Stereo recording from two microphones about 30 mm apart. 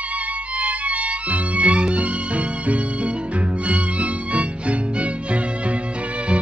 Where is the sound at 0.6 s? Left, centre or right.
Right.